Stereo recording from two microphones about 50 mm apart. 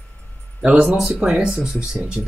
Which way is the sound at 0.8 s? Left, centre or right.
Centre.